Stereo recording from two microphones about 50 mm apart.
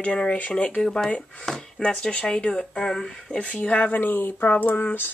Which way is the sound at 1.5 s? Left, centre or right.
Centre.